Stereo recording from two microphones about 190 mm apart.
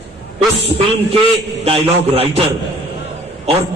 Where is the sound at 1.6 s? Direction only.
30° right (ahead or behind).